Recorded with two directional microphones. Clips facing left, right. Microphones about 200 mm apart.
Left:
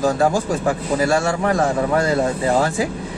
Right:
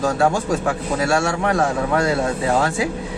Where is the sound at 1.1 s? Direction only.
Centre (ahead or behind).